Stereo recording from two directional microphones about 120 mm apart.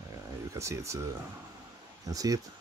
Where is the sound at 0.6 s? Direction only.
25° right (ahead or behind).